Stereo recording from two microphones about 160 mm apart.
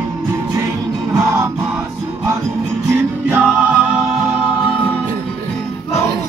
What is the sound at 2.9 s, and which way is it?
Music, 10° right (ahead or behind).